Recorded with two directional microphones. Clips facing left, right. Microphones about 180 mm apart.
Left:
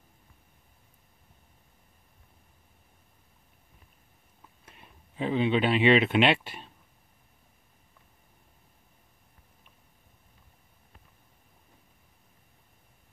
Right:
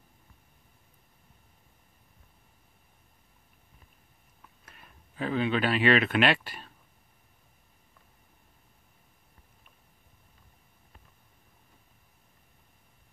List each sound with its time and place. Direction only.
4.7 s speech: 20° left (ahead or behind)